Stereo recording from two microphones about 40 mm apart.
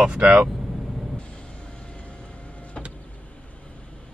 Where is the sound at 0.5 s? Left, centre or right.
Centre.